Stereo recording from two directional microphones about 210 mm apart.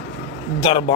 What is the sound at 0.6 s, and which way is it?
Speech, 25° left (ahead or behind).